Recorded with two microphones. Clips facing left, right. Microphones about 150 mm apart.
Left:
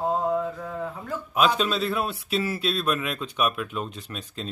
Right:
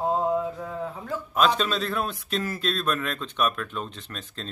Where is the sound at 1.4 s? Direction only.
5° left (ahead or behind).